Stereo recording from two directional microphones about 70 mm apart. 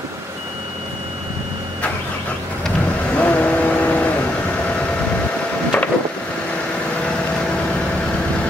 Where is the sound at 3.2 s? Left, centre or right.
Left.